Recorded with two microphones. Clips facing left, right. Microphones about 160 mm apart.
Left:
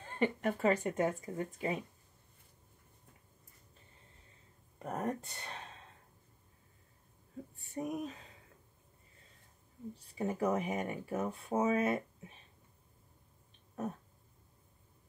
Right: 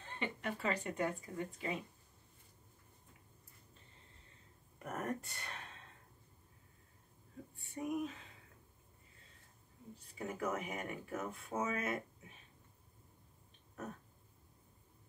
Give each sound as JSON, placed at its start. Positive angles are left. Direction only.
{"t": 0.0, "sound": "speech", "side_deg": 45}
{"t": 4.7, "sound": "speech", "side_deg": 25}
{"t": 7.5, "sound": "a sound", "side_deg": 40}
{"t": 10.1, "sound": "speech", "side_deg": 30}